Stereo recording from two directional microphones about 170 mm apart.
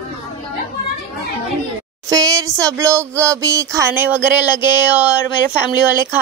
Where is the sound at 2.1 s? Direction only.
20° right (ahead or behind).